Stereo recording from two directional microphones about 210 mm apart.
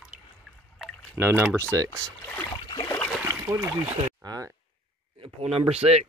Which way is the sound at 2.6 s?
20° left (ahead or behind).